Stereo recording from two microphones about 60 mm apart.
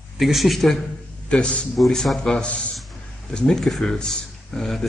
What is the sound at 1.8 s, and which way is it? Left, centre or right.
Speech, centre.